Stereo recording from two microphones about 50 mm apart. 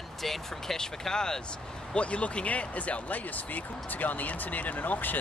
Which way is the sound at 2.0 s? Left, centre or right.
Left.